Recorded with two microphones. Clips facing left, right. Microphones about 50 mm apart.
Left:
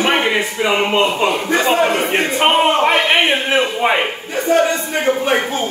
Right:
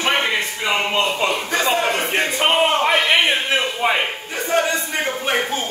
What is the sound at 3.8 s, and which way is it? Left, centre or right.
Speech, left.